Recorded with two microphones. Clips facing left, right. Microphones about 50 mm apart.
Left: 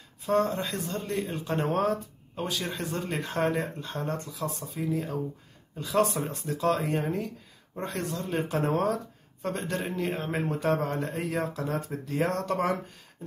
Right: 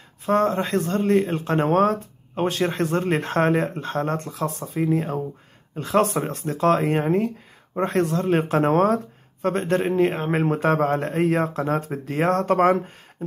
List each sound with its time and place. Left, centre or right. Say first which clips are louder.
0.2 s speech: right 6 dB; right
0.7 s speech: right 12 dB; right
2.4 s speech: right 10 dB; right
6.0 s speech: right 6 dB; right
7.9 s speech: right 10 dB; right
11.9 s speech: right 6 dB; right